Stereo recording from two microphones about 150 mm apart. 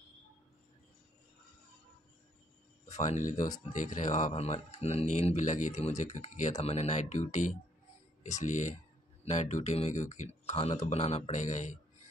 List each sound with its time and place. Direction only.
2.9 s speech: 50° left (ahead or behind)